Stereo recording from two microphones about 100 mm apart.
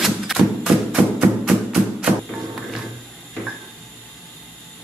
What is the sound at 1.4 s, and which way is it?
Music, 5° right (ahead or behind).